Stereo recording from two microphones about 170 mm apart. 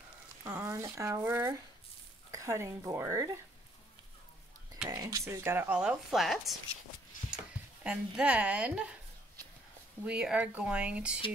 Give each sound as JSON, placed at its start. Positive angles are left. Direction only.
{"t": 0.4, "sound": "speech", "side_deg": -15}
{"t": 4.8, "sound": "speech", "side_deg": -20}
{"t": 7.8, "sound": "a woman's voice", "side_deg": -5}
{"t": 10.0, "sound": "speech", "side_deg": -5}